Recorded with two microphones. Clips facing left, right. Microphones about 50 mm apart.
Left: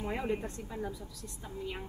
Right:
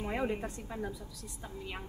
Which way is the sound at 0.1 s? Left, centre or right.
Centre.